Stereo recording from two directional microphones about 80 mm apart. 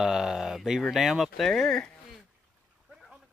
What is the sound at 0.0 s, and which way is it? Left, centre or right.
Speech, centre.